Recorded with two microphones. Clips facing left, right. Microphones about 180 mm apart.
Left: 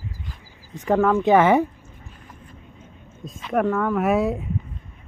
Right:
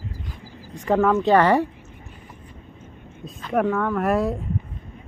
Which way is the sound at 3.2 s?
Centre (ahead or behind).